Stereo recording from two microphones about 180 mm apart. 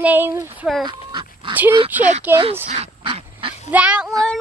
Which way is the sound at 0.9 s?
25° right (ahead or behind).